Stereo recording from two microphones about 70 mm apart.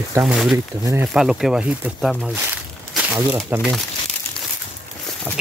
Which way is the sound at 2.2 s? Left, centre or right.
Right.